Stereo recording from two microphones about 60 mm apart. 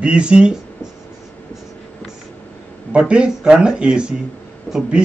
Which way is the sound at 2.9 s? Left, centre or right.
Centre.